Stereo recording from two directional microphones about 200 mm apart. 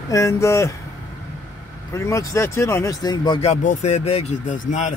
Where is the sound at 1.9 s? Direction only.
15° left (ahead or behind).